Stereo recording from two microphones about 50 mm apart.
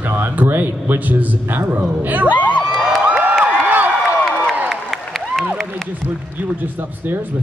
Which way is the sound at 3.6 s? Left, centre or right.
Right.